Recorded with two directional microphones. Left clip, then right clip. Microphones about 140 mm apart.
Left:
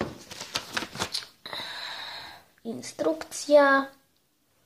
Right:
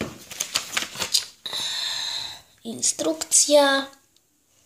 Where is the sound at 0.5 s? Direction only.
60° left (ahead or behind).